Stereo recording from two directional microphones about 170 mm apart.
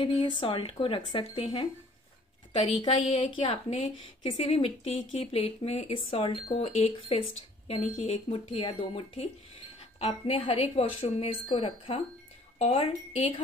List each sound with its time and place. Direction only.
0.0 s speech: 30° left (ahead or behind)
3.2 s a woman's voice: 30° left (ahead or behind)